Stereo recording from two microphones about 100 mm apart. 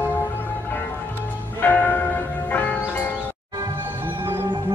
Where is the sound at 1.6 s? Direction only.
15° left (ahead or behind).